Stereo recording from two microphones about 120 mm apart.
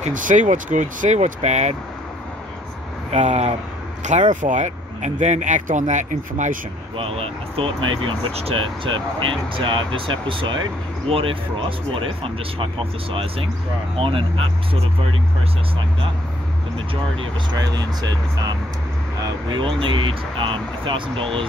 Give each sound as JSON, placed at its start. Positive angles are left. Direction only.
{"t": 0.0, "sound": "speech", "side_deg": -90}
{"t": 3.1, "sound": "speech", "side_deg": -70}
{"t": 4.3, "sound": "speech", "side_deg": -90}
{"t": 7.0, "sound": "speech", "side_deg": -55}
{"t": 16.9, "sound": "speech", "side_deg": -40}
{"t": 19.1, "sound": "speech", "side_deg": -40}